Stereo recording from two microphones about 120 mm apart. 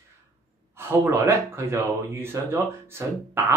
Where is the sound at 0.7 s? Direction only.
20° right (ahead or behind).